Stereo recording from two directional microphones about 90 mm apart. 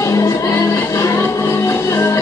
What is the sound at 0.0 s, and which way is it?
Music, 35° left (ahead or behind).